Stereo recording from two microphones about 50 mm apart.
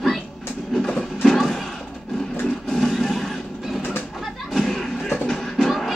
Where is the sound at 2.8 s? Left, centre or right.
Centre.